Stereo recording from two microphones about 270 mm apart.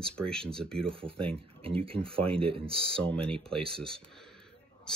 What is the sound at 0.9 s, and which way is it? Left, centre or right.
Speech, centre.